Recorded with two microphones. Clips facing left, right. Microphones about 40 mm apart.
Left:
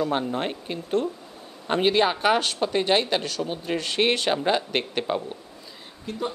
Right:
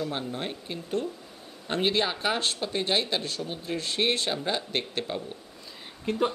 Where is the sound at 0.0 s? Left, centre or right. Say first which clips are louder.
Left 7 dB; left.